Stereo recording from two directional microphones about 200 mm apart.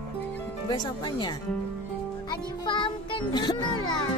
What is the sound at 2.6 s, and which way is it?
Speech, 25° left (ahead or behind).